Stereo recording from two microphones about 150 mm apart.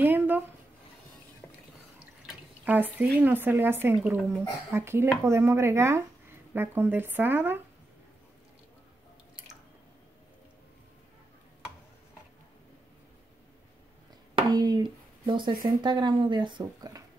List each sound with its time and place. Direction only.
0.0 s speech: 15° right (ahead or behind)
1.4 s drip: 15° left (ahead or behind)
2.2 s speech: 10° right (ahead or behind)
14.3 s speech: 30° right (ahead or behind)